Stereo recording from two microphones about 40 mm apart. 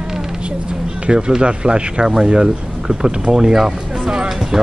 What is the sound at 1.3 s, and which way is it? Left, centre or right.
Speech, right.